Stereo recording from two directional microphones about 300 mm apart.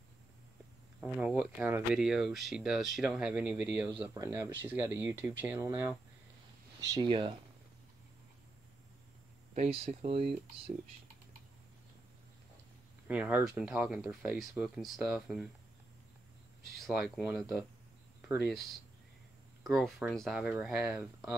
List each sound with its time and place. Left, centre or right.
1.0 s speech: centre
9.5 s speech: centre
13.1 s speech: centre
16.7 s speech: centre
19.6 s speech: centre